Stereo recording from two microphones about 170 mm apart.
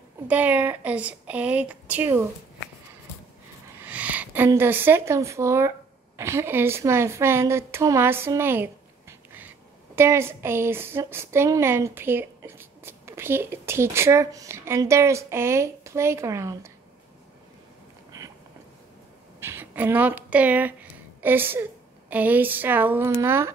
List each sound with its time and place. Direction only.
0.3 s a woman's voice: 10° right (ahead or behind)
3.8 s a woman's voice: 10° right (ahead or behind)
9.9 s a woman's voice: 15° right (ahead or behind)
18.1 s a sound: 20° right (ahead or behind)
19.4 s a woman's voice: 10° right (ahead or behind)